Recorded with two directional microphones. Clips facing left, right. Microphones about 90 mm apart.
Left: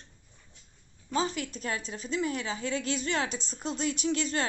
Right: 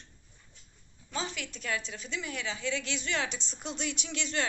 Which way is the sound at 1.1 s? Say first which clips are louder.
Left 7 dB; 40° left (ahead or behind).